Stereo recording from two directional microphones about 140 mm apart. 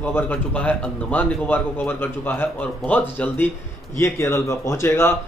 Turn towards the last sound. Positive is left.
turn(degrees=20)  # may be behind; listen again after turning